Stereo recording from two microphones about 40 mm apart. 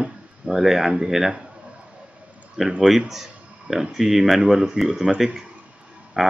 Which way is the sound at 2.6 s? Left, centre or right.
Centre.